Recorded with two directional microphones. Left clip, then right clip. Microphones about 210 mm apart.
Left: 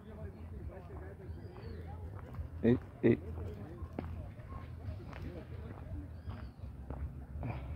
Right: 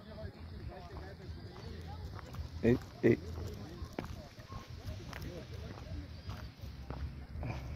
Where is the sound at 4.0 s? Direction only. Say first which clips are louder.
Right 2 dB; 20° right (ahead or behind).